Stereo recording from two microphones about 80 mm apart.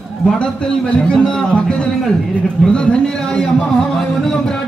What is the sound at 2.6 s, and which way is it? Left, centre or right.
Speech, centre.